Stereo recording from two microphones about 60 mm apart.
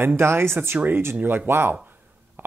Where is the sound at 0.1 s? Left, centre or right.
Right.